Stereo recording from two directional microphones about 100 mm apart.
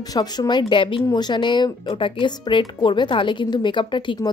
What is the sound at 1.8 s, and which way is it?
A woman's voice, 60° left (ahead or behind).